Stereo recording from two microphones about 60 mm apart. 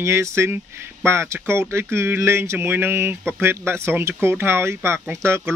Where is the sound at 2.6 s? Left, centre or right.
Right.